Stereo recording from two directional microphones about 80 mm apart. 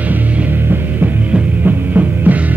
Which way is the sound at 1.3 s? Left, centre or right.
Right.